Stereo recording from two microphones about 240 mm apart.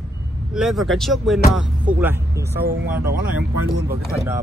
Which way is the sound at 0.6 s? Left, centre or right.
Centre.